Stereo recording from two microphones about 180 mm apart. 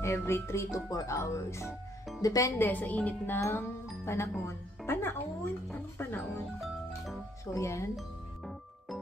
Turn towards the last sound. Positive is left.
turn(degrees=15)  # may be behind; listen again after turning